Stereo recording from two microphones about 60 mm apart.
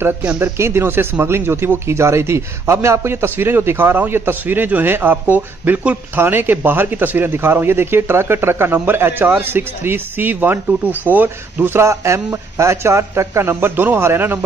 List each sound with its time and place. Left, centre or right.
0.4 s a man's voice: right
11.8 s speech: right